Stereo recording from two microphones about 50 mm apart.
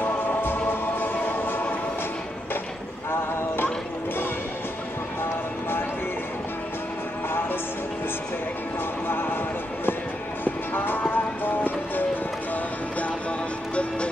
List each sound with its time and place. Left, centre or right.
0.0 s music: left
3.1 s a sound: left
9.0 s music: left
10.4 s music: left